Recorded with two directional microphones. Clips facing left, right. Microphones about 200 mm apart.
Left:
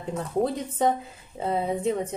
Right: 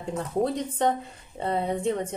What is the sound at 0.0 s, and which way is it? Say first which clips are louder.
Speech: even; centre (ahead or behind).